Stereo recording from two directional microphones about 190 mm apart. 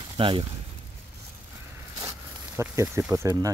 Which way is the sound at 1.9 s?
15° right (ahead or behind).